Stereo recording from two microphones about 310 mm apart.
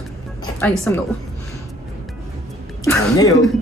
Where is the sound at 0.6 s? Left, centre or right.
Centre.